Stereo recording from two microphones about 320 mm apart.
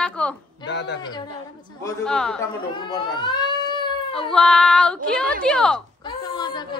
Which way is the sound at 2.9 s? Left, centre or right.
Centre.